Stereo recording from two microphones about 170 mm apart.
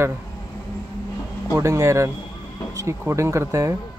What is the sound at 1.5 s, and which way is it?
Speech, 20° right (ahead or behind).